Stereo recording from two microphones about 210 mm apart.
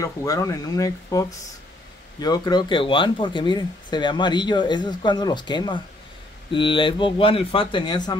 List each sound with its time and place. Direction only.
0.0 s speech: 15° left (ahead or behind)